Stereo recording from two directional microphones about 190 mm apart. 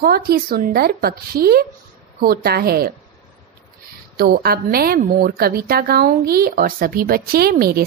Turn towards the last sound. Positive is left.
turn(degrees=-50)  # may be behind; listen again after turning